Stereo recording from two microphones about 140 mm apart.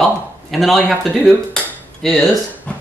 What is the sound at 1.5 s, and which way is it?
Dishes, 5° left (ahead or behind).